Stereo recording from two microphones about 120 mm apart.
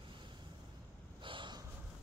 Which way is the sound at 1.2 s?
40° right (ahead or behind).